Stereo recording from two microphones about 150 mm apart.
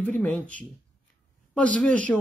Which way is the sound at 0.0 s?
10° left (ahead or behind).